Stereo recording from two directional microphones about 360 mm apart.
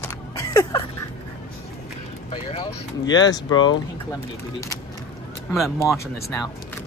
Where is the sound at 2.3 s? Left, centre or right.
Centre.